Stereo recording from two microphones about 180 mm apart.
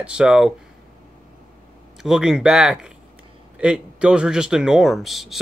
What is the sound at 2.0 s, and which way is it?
Speech, 5° right (ahead or behind).